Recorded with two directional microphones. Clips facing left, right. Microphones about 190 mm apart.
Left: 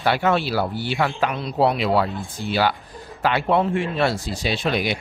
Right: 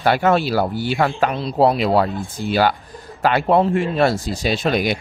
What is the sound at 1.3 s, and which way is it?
A man's voice, 30° right (ahead or behind).